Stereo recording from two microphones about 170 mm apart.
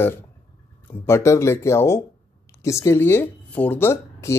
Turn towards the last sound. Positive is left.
turn(degrees=15)  # may be behind; listen again after turning